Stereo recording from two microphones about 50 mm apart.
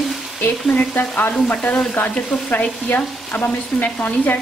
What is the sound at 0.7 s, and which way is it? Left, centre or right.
Stir, left.